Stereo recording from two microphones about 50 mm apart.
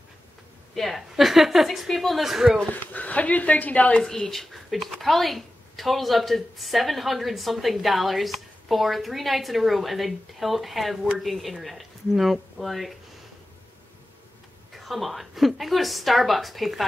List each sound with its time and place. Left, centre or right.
0.7 s speech: centre
2.7 s speech: left
4.3 s speech: centre
14.8 s speech: centre